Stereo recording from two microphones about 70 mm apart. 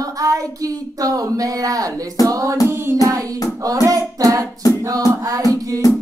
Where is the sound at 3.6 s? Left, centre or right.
Right.